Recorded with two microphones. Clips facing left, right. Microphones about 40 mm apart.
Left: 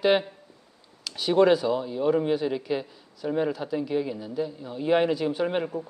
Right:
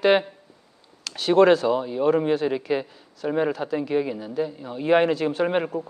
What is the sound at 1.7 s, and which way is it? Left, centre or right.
Speech, centre.